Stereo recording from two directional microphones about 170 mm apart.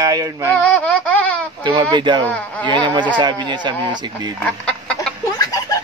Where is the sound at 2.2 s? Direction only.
10° left (ahead or behind).